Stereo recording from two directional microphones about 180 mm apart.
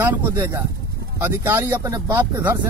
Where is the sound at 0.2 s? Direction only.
15° right (ahead or behind).